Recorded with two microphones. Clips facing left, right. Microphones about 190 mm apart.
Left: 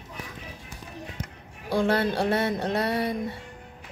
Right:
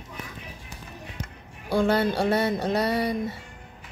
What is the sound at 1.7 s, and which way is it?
Speech, centre (ahead or behind).